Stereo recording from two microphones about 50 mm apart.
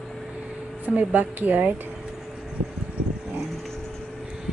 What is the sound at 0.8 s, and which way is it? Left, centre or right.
Speech, right.